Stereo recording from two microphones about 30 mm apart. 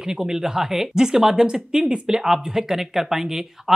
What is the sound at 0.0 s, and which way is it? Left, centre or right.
Speech, centre.